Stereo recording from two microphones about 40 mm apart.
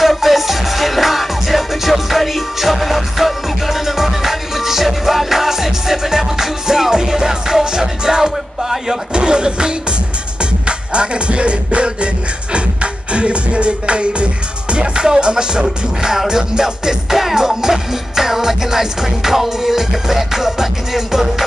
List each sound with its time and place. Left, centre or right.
0.0 s music: centre; by 9.8 s right
10.9 s music: right; by 21.5 s centre